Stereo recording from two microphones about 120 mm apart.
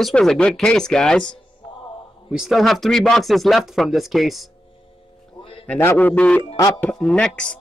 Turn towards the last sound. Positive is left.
turn(degrees=10)  # may be behind; listen again after turning